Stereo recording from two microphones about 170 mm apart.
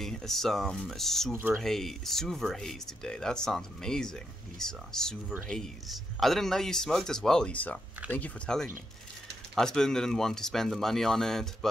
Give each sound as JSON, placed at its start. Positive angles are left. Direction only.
{"t": 0.0, "sound": "speech", "side_deg": 0}
{"t": 1.3, "sound": "speech", "side_deg": -15}
{"t": 1.6, "sound": "speech", "side_deg": 0}